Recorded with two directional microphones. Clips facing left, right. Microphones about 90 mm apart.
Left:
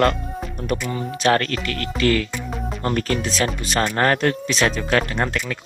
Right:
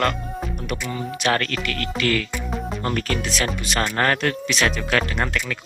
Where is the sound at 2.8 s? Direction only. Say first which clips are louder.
Left 4 dB; 30° left (ahead or behind).